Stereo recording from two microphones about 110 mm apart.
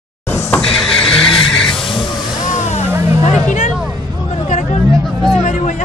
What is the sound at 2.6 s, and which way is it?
Music, 90° left.